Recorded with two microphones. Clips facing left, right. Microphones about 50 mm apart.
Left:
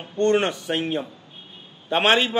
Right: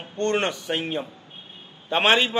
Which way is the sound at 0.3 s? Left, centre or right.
Centre.